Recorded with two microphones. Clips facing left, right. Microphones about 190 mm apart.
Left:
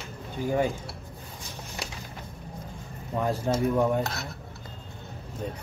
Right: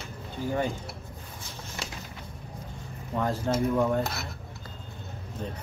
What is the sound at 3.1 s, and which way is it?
Speech, 15° left (ahead or behind).